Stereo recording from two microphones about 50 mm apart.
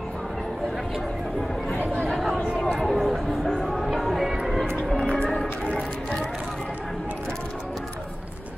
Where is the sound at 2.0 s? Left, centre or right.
Centre.